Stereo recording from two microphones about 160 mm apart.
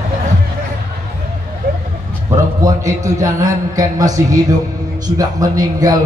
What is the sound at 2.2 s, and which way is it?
A man's voice, 20° right (ahead or behind).